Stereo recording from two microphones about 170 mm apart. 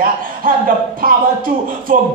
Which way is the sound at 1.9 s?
50° right (ahead or behind).